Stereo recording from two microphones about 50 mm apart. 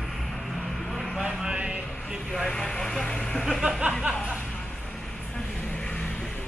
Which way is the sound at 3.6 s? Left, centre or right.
Centre.